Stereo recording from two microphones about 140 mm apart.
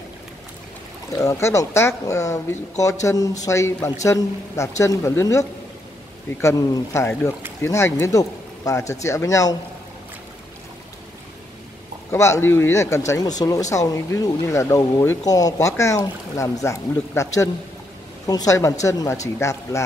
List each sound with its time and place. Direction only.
1.1 s speech: 20° left (ahead or behind)
12.1 s speech: 20° left (ahead or behind)